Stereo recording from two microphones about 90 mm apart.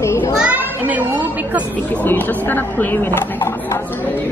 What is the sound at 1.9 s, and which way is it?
Speech, 20° left (ahead or behind).